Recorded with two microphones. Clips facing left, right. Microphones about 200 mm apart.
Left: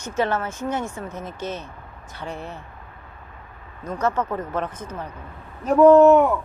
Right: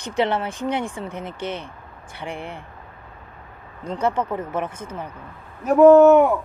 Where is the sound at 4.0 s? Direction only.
15° right (ahead or behind).